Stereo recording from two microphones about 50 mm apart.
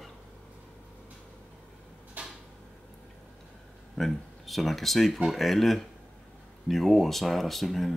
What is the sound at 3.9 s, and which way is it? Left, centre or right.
Speech, centre.